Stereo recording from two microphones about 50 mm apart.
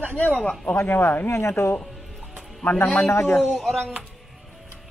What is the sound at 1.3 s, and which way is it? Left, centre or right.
Speech, left.